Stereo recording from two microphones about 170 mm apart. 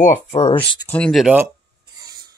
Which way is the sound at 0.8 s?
5° left (ahead or behind).